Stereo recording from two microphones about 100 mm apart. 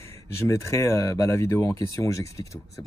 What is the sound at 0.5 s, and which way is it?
Speech, 30° left (ahead or behind).